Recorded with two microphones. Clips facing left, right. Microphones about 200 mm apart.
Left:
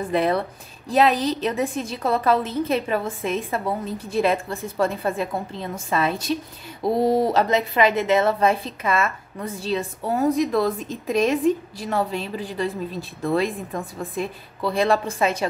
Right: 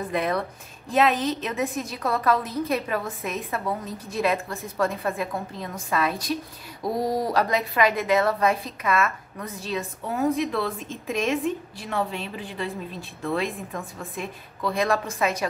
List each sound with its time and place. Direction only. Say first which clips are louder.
0.1 s a woman's voice: left 5 dB; 30° left (ahead or behind)